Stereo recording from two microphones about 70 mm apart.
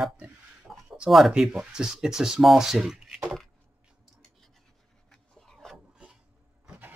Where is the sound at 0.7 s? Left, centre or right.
Centre.